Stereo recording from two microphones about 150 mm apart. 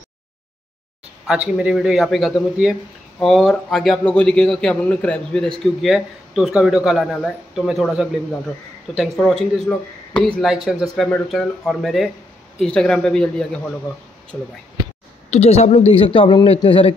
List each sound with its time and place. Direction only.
1.2 s speech: 5° right (ahead or behind); by 10.3 s 10° left (ahead or behind)
10.4 s speech: 5° right (ahead or behind)
15.3 s a man's voice: 45° left (ahead or behind)